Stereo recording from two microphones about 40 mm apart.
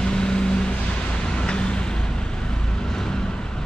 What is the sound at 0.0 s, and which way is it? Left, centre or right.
Vehicle, left.